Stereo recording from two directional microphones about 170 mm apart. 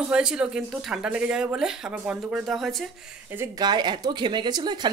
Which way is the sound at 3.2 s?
15° right (ahead or behind).